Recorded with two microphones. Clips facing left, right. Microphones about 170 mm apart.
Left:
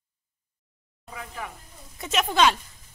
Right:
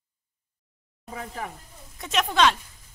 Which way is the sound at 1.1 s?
35° right (ahead or behind).